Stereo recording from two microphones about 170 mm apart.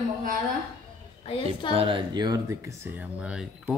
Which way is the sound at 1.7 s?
30° right (ahead or behind).